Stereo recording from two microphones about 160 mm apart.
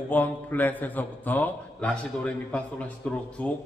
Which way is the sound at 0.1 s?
10° left (ahead or behind).